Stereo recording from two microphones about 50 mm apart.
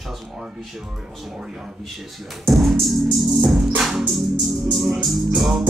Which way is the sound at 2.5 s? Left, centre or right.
Centre.